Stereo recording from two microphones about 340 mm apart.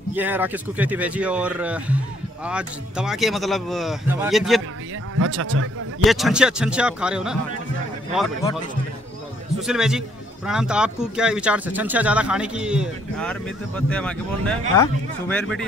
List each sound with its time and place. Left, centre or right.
0.1 s a man's voice: centre
5.1 s a man's voice: right
6.0 s a man's voice: centre
9.6 s a man's voice: centre